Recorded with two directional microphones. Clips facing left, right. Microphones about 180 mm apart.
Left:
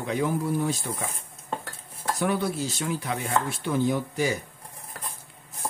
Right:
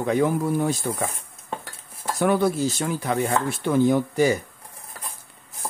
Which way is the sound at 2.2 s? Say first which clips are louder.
Right 7 dB; 50° right (ahead or behind).